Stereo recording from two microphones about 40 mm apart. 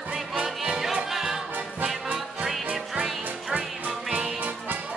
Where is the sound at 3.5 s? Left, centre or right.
Right.